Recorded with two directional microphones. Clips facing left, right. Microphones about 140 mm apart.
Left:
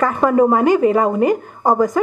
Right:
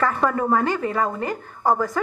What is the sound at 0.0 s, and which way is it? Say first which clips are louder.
A woman's voice: left 7 dB; 20° left (ahead or behind).